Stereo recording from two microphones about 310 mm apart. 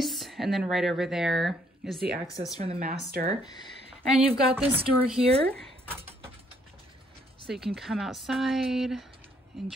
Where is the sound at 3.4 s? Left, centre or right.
Centre.